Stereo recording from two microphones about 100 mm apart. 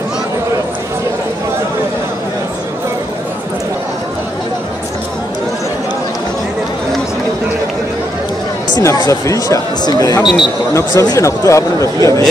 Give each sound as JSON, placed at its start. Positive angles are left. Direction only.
{"t": 8.8, "sound": "speech", "side_deg": 40}
{"t": 10.2, "sound": "speech", "side_deg": 0}
{"t": 11.0, "sound": "speech", "side_deg": 30}